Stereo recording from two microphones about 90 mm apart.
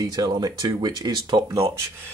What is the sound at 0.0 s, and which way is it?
Speech, 50° right (ahead or behind).